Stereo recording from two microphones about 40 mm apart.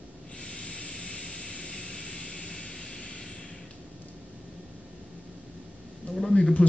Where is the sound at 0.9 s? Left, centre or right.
Left.